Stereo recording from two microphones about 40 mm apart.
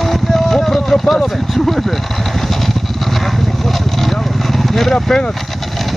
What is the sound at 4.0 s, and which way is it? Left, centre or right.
Vehicle, centre.